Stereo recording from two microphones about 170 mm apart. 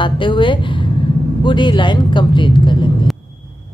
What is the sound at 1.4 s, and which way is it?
Speech, 25° left (ahead or behind).